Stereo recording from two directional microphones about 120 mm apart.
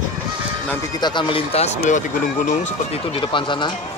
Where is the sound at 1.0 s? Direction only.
40° left (ahead or behind); by 2.0 s 70° left (ahead or behind).